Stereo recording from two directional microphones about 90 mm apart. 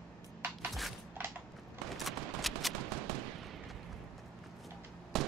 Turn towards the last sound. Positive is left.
turn(degrees=0)  # may be behind; listen again after turning